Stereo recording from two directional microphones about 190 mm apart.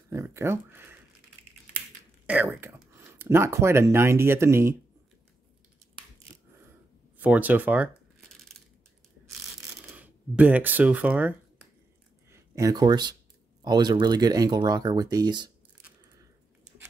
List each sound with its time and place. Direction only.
0.1 s speech: 15° right (ahead or behind)
2.2 s speech: 5° right (ahead or behind)
7.2 s speech: 10° right (ahead or behind)
9.8 s speech: 10° right (ahead or behind)